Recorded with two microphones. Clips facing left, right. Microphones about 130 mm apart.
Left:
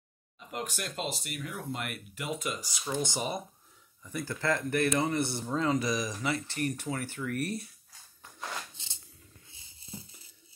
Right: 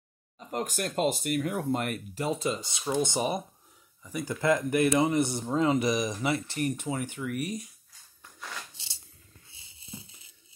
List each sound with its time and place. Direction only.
0.4 s speech: 40° right (ahead or behind); by 3.4 s 25° right (ahead or behind)
4.0 s speech: 10° right (ahead or behind)
6.8 s speech: 15° right (ahead or behind)
8.7 s coin: 85° right